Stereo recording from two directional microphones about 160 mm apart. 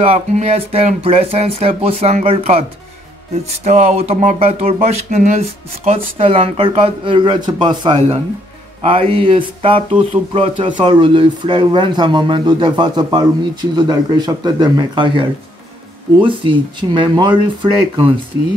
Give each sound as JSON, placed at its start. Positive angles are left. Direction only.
{"t": 0.0, "sound": "speech", "side_deg": -40}
{"t": 3.6, "sound": "speech", "side_deg": -40}